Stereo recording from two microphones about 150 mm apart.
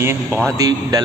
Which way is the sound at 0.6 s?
25° right (ahead or behind).